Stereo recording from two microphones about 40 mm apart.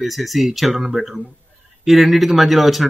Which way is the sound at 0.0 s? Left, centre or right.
Centre.